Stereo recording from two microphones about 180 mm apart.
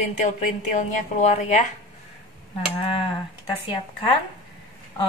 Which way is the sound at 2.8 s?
30° left (ahead or behind).